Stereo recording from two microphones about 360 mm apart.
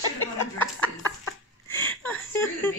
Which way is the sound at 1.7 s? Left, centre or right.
Centre.